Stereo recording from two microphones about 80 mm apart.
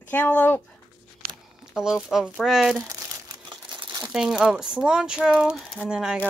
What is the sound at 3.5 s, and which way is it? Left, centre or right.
Crumpling, right.